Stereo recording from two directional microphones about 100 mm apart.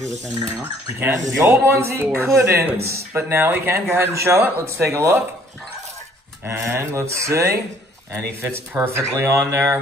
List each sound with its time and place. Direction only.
0.9 s speech: 25° right (ahead or behind)
6.4 s speech: 25° right (ahead or behind)
8.7 s speech: 30° right (ahead or behind)